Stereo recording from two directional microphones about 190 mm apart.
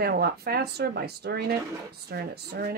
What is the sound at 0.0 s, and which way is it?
Speech, 55° right (ahead or behind).